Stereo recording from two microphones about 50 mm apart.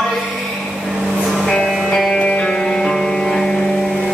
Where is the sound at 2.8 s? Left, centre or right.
Centre.